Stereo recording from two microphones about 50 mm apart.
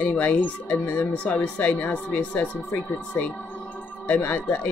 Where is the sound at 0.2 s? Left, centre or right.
Left.